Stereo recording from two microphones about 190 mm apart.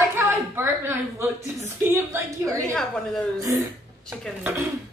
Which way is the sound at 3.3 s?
15° right (ahead or behind).